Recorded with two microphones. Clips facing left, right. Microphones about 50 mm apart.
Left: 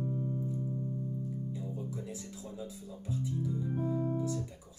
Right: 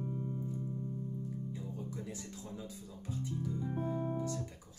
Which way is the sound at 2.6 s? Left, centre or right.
Centre.